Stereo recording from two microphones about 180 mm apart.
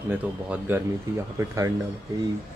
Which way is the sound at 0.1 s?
10° right (ahead or behind).